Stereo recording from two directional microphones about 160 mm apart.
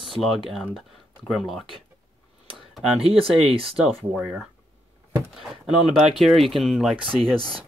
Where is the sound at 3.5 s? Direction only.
35° right (ahead or behind).